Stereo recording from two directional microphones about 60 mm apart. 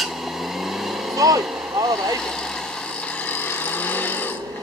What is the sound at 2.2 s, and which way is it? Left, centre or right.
Speech, centre.